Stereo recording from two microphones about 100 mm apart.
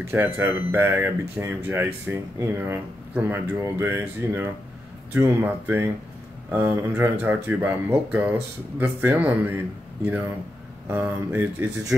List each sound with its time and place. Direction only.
0.0 s speech: 20° right (ahead or behind)
10.9 s speech: 20° right (ahead or behind)